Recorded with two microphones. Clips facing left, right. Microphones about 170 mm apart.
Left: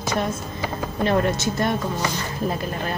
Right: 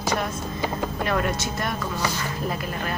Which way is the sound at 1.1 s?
30° left (ahead or behind).